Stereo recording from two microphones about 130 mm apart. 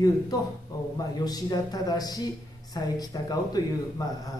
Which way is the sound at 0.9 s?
30° left (ahead or behind).